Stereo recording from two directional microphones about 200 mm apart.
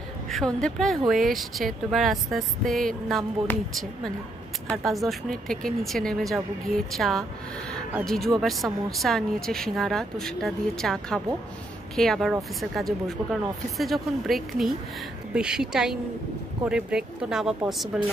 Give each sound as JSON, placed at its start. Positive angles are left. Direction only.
{"t": 0.3, "sound": "speech", "side_deg": 0}